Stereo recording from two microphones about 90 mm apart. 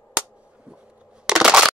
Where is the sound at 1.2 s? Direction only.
5° right (ahead or behind).